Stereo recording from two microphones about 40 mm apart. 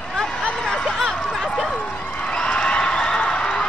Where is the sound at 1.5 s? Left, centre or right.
Centre.